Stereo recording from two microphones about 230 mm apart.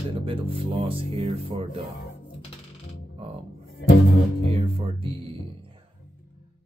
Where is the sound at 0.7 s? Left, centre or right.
Right.